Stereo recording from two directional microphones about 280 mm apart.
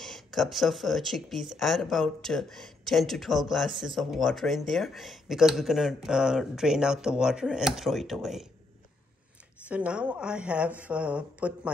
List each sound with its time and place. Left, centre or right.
0.0 s speech: centre
9.7 s speech: centre